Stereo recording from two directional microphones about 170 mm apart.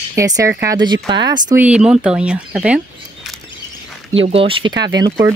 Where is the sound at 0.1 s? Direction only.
15° right (ahead or behind).